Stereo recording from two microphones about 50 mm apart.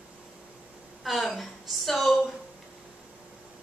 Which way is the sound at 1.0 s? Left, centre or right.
Centre.